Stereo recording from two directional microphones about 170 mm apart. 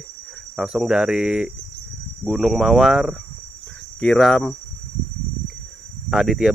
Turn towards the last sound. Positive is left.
turn(degrees=0)  # may be behind; listen again after turning